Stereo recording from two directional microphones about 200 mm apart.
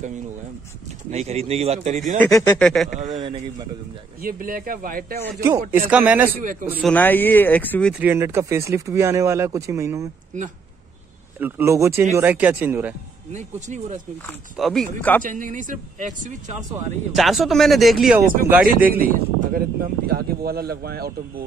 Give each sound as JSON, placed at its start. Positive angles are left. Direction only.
{"t": 1.1, "sound": "speech", "side_deg": -30}
{"t": 2.3, "sound": "speech", "side_deg": 20}
{"t": 2.6, "sound": "speech", "side_deg": 0}
{"t": 3.0, "sound": "speech", "side_deg": -30}
{"t": 4.2, "sound": "speech", "side_deg": -45}
{"t": 5.7, "sound": "speech", "side_deg": -10}
{"t": 6.9, "sound": "speech", "side_deg": 10}
{"t": 8.0, "sound": "speech", "side_deg": -10}
{"t": 11.3, "sound": "speech", "side_deg": -10}
{"t": 13.3, "sound": "speech", "side_deg": -35}
{"t": 14.2, "sound": "speech", "side_deg": 0}
{"t": 15.2, "sound": "speech", "side_deg": -40}
{"t": 17.1, "sound": "speech", "side_deg": 0}
{"t": 18.9, "sound": "speech", "side_deg": -45}